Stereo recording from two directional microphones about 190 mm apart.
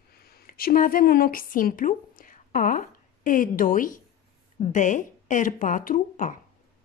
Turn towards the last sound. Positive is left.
turn(degrees=45)  # may be behind; listen again after turning